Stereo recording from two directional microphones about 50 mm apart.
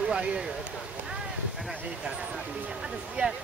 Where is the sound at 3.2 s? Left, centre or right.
Right.